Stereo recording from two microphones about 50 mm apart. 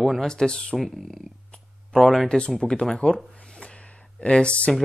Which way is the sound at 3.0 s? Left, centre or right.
Left.